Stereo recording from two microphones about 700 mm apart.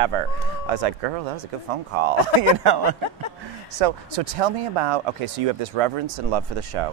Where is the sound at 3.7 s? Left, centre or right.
Right.